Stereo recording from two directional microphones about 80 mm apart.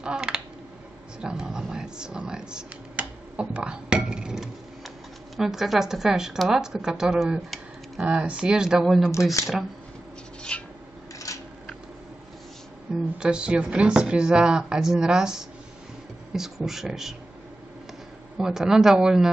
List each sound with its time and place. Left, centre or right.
0.0 s speech: centre
9.1 s speech: left
10.5 s filing: centre
11.3 s scissors: left
12.9 s speech: centre
18.4 s speech: centre